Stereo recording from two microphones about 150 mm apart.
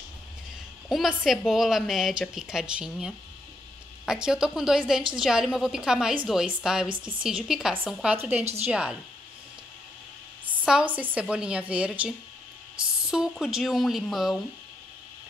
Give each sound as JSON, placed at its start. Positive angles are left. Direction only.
{"t": 0.8, "sound": "a woman's voice", "side_deg": 0}
{"t": 6.9, "sound": "speech", "side_deg": -35}
{"t": 7.2, "sound": "a woman's voice", "side_deg": -5}
{"t": 10.7, "sound": "a woman's voice", "side_deg": -10}